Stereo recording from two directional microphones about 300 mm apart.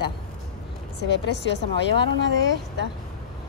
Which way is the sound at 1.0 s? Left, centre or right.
Left.